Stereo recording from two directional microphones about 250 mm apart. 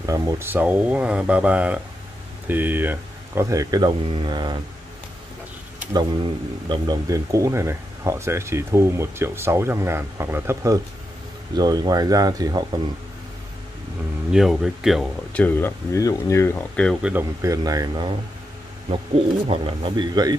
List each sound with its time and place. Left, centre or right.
0.0 s speech: centre
5.9 s speech: centre
14.3 s speech: centre
17.1 s speech: centre
19.4 s speech: right